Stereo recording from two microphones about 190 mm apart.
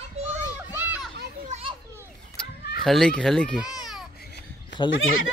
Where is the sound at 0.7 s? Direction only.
10° right (ahead or behind).